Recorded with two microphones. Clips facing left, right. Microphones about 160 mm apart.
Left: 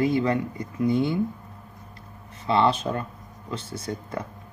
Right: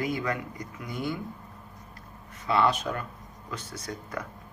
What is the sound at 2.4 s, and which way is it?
Speech, 25° left (ahead or behind).